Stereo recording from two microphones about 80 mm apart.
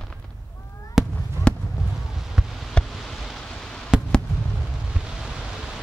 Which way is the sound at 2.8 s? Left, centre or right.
Centre.